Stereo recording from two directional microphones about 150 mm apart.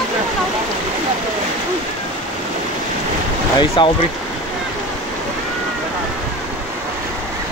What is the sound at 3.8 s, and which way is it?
Speech, 35° left (ahead or behind).